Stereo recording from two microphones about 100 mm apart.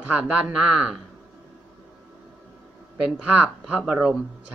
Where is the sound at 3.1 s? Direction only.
10° right (ahead or behind).